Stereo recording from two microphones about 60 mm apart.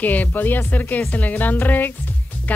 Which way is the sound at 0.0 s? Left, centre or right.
Left.